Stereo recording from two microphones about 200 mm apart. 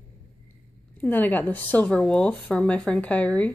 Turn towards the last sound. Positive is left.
turn(degrees=5)  # may be behind; listen again after turning